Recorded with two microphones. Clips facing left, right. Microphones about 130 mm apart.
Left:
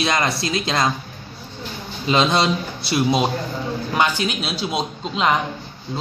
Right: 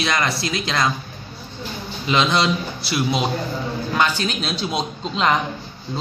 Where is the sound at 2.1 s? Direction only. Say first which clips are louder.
Left 1 dB; 25° left (ahead or behind); by 5.3 s 5° left (ahead or behind).